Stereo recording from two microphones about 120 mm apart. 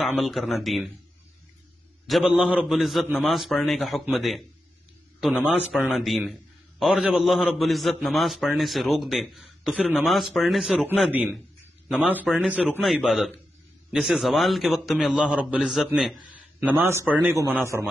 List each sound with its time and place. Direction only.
0.0 s a man's voice: centre (ahead or behind)
2.0 s a man's voice: centre (ahead or behind)
5.6 s a man's voice: 15° left (ahead or behind)
5.9 s a man's voice: centre (ahead or behind)
11.1 s a man's voice: 15° right (ahead or behind)
12.8 s a man's voice: centre (ahead or behind)
16.6 s a man's voice: 20° right (ahead or behind)